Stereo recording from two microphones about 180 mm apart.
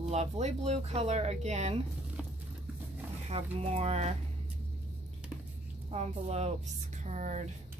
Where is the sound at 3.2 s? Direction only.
35° right (ahead or behind).